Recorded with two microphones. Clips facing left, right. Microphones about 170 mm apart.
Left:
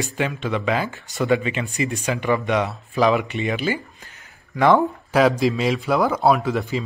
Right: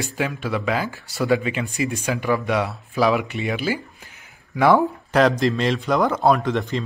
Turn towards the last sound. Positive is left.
turn(degrees=5)  # may be behind; listen again after turning